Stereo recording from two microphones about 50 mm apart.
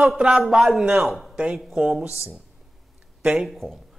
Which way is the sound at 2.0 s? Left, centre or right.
Left.